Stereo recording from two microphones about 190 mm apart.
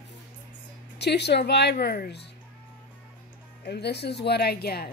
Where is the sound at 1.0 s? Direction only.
60° left (ahead or behind).